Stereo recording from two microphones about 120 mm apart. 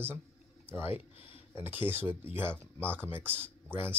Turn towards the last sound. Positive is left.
turn(degrees=-20)  # may be behind; listen again after turning